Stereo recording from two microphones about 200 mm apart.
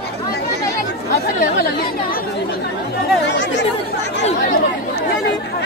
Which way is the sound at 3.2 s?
65° left (ahead or behind).